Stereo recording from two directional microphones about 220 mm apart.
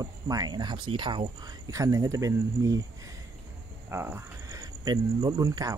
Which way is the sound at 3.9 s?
10° right (ahead or behind).